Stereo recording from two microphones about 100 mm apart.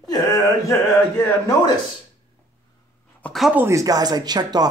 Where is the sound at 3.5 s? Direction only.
30° right (ahead or behind).